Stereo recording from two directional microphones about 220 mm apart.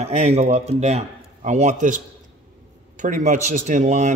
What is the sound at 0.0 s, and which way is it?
A man's voice, 30° right (ahead or behind).